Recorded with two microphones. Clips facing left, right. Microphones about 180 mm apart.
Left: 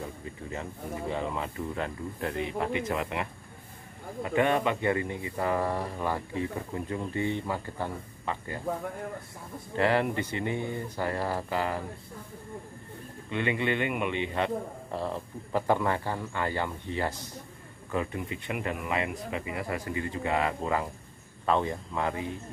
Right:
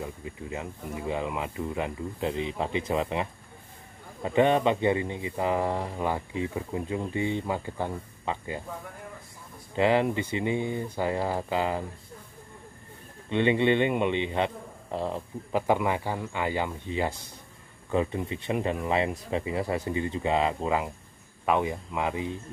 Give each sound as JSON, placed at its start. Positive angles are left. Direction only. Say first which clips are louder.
{"t": 0.2, "sound": "speech", "louder": "right 2 dB", "side_deg": -15}
{"t": 9.8, "sound": "speech", "louder": "right 2 dB", "side_deg": -20}
{"t": 13.3, "sound": "speech", "louder": "right 6 dB", "side_deg": -25}
{"t": 17.9, "sound": "speech", "louder": "right 4 dB", "side_deg": -25}